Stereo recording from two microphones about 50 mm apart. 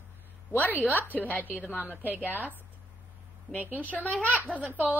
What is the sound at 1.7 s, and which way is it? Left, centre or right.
Speech, right.